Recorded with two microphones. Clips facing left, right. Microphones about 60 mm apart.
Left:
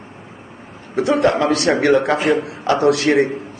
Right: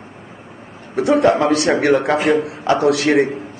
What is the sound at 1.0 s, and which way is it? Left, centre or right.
Speech, centre.